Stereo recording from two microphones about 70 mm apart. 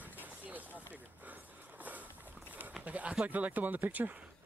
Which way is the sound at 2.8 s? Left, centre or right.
Right.